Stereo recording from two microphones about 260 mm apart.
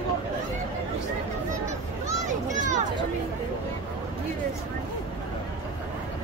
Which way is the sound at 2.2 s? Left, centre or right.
Right.